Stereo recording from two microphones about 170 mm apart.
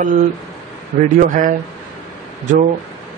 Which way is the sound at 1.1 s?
50° right (ahead or behind).